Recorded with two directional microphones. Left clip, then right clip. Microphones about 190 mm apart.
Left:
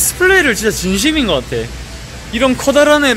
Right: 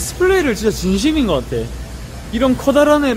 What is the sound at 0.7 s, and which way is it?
Speech, 15° right (ahead or behind).